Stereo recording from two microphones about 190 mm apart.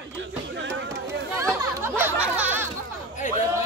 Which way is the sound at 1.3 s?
15° right (ahead or behind).